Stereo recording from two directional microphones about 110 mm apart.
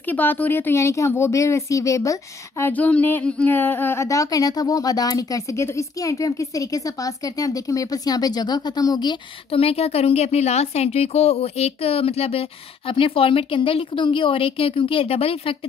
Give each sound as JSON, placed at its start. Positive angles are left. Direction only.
{"t": 0.0, "sound": "speech", "side_deg": 15}
{"t": 2.6, "sound": "a woman's voice", "side_deg": 15}
{"t": 9.5, "sound": "a woman's voice", "side_deg": 65}